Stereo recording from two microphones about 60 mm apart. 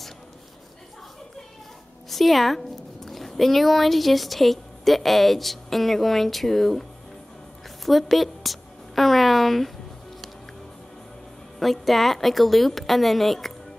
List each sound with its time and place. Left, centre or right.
2.0 s speech: centre
7.8 s a sound: centre
11.6 s a woman's voice: centre